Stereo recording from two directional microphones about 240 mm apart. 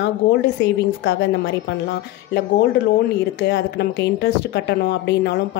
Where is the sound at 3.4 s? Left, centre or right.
Left.